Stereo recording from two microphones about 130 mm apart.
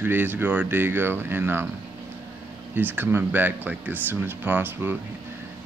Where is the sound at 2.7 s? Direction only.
15° right (ahead or behind).